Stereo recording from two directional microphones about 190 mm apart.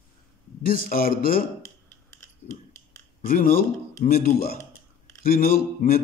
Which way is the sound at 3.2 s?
50° left (ahead or behind).